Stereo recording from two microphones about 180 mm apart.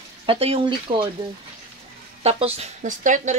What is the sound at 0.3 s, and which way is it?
Speech, 30° right (ahead or behind).